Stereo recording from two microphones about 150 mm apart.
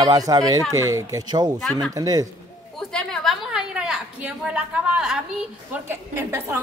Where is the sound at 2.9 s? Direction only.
5° left (ahead or behind).